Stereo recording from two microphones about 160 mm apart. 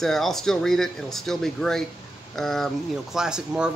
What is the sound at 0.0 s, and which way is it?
Speech, centre (ahead or behind).